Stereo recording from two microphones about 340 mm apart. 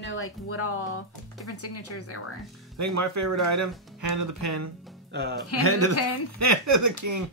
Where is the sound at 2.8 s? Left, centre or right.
Right.